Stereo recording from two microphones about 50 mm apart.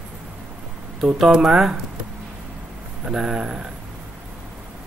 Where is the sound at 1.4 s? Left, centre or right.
Centre.